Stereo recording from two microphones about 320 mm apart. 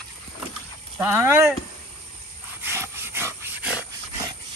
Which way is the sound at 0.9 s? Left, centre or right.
Centre.